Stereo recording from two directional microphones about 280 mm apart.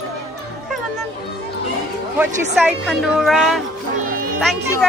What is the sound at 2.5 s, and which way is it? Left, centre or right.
A woman's voice, centre.